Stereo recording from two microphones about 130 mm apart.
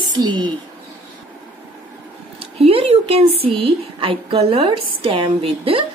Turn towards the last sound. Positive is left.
turn(degrees=-45)  # may be behind; listen again after turning